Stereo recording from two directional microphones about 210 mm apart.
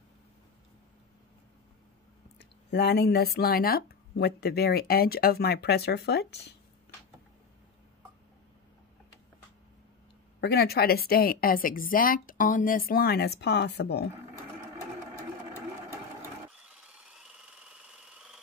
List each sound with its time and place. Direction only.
2.3 s a woman's voice: 50° left (ahead or behind)
10.4 s a woman's voice: 50° left (ahead or behind)
16.2 s sewing machine: 5° right (ahead or behind)